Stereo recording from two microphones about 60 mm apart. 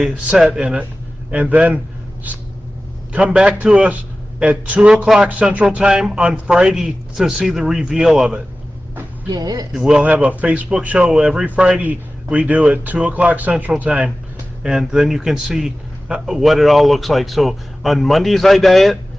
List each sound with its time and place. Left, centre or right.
0.5 s a man's voice: centre
3.1 s a man's voice: centre
4.9 s a man's voice: centre
5.2 s a man's voice: right
5.9 s a man's voice: centre
9.3 s speech: right
9.8 s a man's voice: centre
10.0 s a man's voice: right
14.6 s a man's voice: centre